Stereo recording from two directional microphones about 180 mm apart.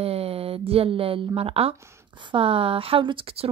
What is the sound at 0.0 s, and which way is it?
Speech, 35° right (ahead or behind).